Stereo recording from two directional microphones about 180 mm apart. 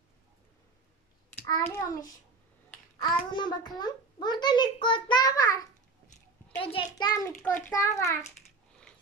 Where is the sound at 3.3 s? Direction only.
25° left (ahead or behind).